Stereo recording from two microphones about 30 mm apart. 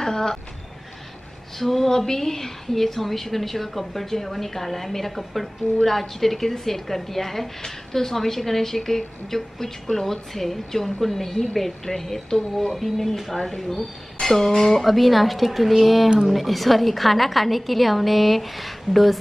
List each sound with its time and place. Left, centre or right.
0.0 s a sound: centre
1.6 s a woman's voice: centre
11.9 s a woman's voice: centre
12.7 s a woman's voice: centre
14.2 s music: centre
14.7 s a woman's voice: centre